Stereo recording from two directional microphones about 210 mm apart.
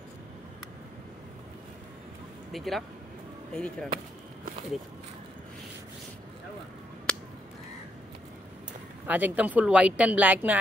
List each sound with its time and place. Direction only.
2.5 s speech: centre (ahead or behind)
7.1 s a sound: 5° left (ahead or behind)
9.0 s speech: 5° right (ahead or behind)